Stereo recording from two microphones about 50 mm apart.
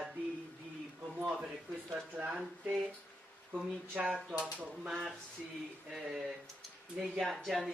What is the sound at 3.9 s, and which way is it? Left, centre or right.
Speech, right.